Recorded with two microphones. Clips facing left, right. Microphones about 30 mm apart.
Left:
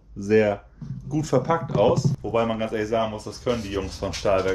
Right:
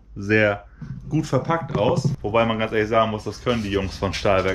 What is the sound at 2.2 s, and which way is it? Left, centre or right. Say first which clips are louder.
Speech: right 3 dB; right.